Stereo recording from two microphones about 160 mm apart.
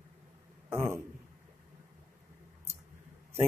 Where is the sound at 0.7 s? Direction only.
15° right (ahead or behind).